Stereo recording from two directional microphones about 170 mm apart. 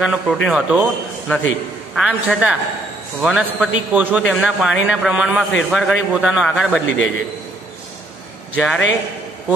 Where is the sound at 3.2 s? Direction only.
5° right (ahead or behind).